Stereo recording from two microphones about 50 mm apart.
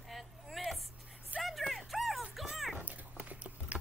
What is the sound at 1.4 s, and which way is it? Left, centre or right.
Music, centre.